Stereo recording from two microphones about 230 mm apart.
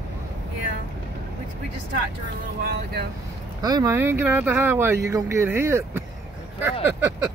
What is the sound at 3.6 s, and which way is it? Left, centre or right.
Speech, centre.